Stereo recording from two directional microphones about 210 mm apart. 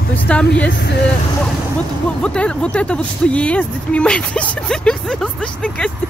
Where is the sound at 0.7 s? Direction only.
50° left (ahead or behind).